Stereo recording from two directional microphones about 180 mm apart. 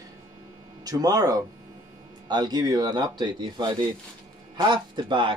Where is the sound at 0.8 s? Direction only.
20° right (ahead or behind).